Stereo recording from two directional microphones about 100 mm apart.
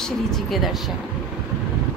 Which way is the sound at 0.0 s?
Centre (ahead or behind).